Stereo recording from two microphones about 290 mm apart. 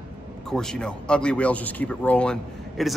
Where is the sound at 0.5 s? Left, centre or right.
Centre.